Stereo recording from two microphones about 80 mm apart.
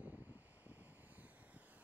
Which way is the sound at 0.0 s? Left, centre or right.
Right.